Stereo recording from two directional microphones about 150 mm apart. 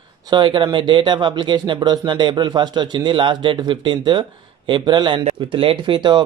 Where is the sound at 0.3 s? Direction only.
30° right (ahead or behind).